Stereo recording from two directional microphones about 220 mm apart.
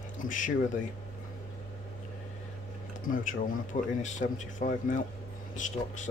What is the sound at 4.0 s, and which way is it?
A man's voice, 35° left (ahead or behind).